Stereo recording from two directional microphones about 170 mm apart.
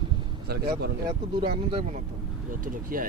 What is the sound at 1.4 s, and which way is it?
Speech, 30° right (ahead or behind).